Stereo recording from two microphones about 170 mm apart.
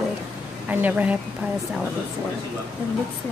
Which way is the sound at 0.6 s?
10° right (ahead or behind).